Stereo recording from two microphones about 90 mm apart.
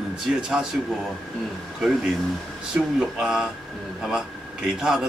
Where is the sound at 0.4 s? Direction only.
10° right (ahead or behind).